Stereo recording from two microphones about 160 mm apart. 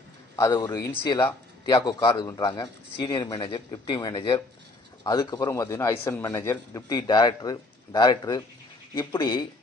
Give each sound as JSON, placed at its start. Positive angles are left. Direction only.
{"t": 0.4, "sound": "a man's voice", "side_deg": 20}